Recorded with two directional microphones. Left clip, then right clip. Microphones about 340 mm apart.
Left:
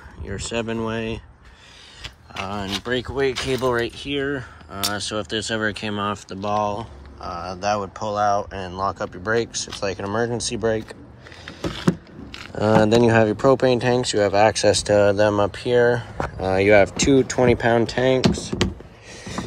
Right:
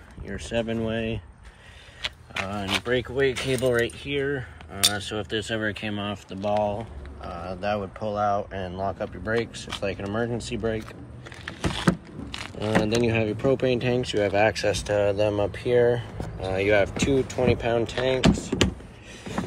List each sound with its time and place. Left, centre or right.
0.3 s speech: centre
2.3 s speech: centre
3.5 s speech: centre
12.5 s speech: left
13.4 s speech: centre
14.5 s speech: left
15.0 s speech: centre
16.4 s speech: left